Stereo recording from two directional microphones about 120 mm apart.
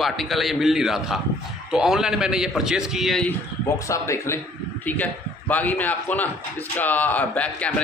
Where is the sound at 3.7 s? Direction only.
25° left (ahead or behind).